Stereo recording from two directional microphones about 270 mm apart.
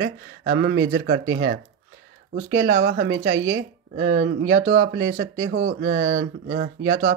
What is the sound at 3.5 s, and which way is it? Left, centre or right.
Speech, right.